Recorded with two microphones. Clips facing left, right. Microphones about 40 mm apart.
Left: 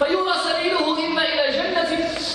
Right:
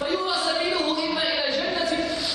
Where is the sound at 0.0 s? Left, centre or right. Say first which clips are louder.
Left 5 dB; left.